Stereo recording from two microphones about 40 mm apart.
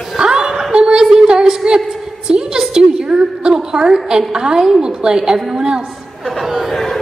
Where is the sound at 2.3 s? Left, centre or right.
Centre.